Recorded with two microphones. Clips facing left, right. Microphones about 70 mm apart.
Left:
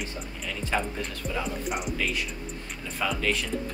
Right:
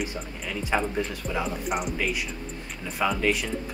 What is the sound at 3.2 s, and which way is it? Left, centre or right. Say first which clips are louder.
Speech: right 3 dB; centre.